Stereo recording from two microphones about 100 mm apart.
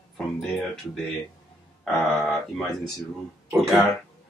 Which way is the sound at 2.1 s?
Centre (ahead or behind).